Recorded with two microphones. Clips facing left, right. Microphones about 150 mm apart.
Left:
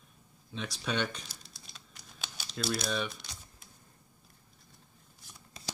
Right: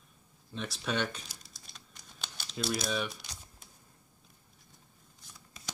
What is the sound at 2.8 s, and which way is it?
Speech, 5° right (ahead or behind).